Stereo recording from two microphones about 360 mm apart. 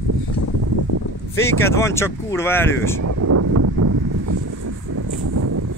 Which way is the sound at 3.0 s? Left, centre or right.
Right.